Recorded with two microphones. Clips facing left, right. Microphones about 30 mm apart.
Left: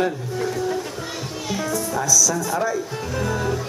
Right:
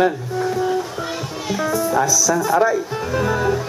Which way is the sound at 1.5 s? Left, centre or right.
Centre.